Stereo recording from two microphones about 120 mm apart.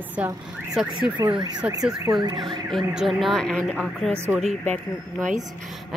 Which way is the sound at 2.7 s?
Centre (ahead or behind).